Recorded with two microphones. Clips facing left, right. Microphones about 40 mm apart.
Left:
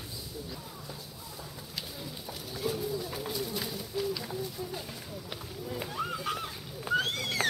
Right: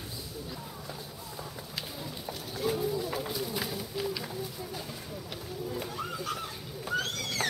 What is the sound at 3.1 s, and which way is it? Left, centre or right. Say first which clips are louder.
Run: right 1 dB; centre.